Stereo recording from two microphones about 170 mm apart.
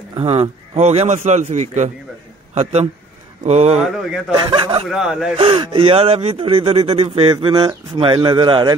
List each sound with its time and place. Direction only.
0.1 s a man's voice: 35° right (ahead or behind)
3.8 s speech: 5° right (ahead or behind)
4.5 s speech: 30° right (ahead or behind)
4.8 s speech: 5° right (ahead or behind)
5.4 s speech: 30° right (ahead or behind)